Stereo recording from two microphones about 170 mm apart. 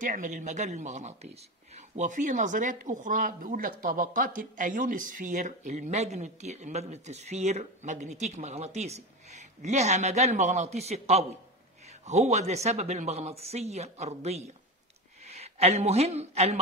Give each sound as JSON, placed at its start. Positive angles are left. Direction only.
{"t": 0.0, "sound": "speech", "side_deg": -50}